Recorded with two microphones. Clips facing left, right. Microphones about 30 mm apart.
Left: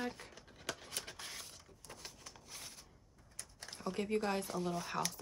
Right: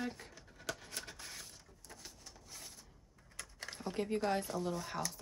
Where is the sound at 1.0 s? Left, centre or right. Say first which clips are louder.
Left 1 dB; left.